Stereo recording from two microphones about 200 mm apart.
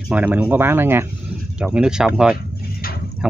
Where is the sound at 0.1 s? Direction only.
10° right (ahead or behind).